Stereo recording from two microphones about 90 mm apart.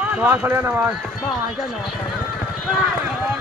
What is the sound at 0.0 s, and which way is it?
Speech, 15° right (ahead or behind).